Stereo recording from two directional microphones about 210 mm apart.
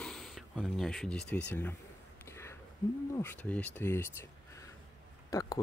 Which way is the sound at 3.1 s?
10° left (ahead or behind).